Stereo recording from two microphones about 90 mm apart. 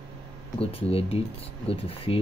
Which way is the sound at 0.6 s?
90° left.